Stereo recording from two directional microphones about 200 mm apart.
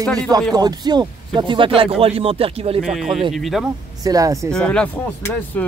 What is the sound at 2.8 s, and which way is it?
Speech, centre (ahead or behind).